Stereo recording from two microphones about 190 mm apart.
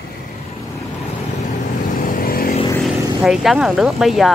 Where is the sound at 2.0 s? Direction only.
50° left (ahead or behind).